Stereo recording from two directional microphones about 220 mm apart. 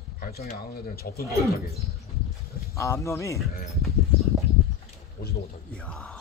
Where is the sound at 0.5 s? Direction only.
45° left (ahead or behind).